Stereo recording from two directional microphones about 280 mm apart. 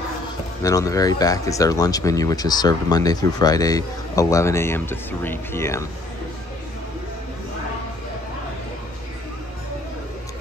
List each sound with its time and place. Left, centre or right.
0.6 s speech: centre